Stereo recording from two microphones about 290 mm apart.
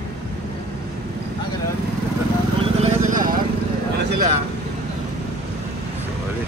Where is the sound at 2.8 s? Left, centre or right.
Right.